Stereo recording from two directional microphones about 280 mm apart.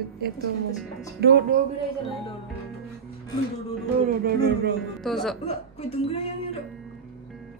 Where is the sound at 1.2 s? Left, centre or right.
Right.